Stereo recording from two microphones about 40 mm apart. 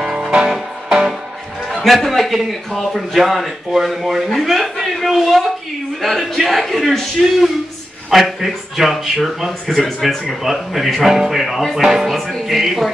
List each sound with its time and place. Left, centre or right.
0.0 s music: centre
1.7 s a man's voice: centre
10.4 s music: centre
12.3 s a man's voice: centre